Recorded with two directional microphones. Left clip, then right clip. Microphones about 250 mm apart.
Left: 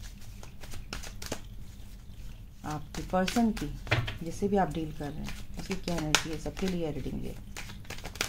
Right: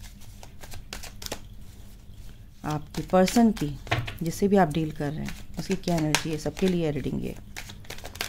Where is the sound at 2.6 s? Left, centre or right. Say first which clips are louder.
Right 6 dB; right.